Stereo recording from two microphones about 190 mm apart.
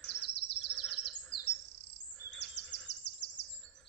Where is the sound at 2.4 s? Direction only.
65° left (ahead or behind).